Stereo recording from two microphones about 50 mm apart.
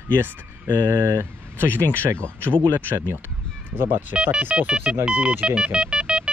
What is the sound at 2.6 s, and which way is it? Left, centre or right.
Speech, right.